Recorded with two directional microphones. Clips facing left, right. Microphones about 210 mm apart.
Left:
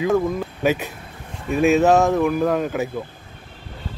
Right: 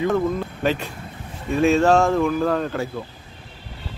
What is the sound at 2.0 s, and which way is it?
Speech, 15° left (ahead or behind).